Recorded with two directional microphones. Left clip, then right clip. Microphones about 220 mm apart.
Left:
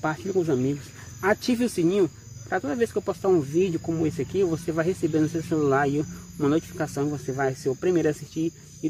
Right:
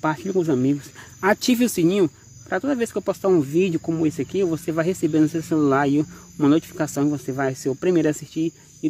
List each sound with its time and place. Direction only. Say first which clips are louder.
0.0 s speech: right 3 dB; 50° right (ahead or behind)